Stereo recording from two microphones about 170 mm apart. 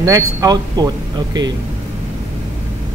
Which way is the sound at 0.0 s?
20° right (ahead or behind).